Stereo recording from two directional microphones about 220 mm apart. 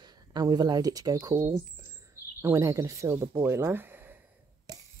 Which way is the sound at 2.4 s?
15° right (ahead or behind).